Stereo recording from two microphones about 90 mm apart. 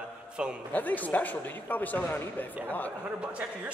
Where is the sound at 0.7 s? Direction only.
20° left (ahead or behind).